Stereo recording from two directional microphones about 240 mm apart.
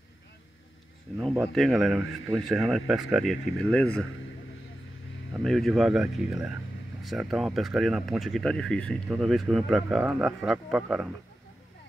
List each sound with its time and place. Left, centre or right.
1.1 s speech: centre
5.4 s speech: centre